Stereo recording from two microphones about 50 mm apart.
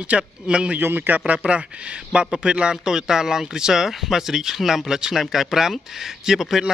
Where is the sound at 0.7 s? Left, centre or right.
Right.